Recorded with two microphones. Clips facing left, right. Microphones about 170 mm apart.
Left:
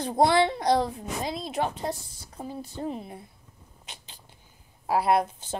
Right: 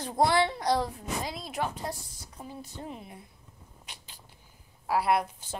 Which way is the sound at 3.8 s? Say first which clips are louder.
Left 3 dB; 25° left (ahead or behind).